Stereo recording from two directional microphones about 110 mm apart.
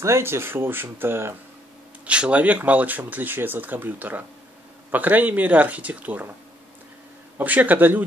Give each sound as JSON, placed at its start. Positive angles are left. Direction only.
{"t": 0.0, "sound": "speech", "side_deg": -25}
{"t": 2.0, "sound": "speech", "side_deg": -10}
{"t": 7.3, "sound": "speech", "side_deg": -15}